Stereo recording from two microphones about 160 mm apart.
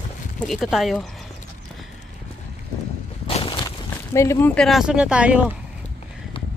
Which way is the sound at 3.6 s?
20° left (ahead or behind).